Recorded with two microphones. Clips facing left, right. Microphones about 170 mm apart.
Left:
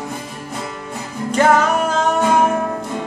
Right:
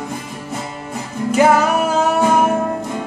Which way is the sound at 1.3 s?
10° right (ahead or behind).